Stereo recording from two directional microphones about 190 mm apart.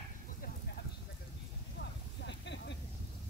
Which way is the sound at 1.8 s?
70° left (ahead or behind).